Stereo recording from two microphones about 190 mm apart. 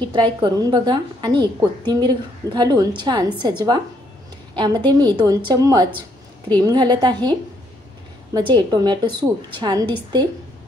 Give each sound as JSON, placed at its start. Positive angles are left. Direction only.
{"t": 0.0, "sound": "a woman's voice", "side_deg": -25}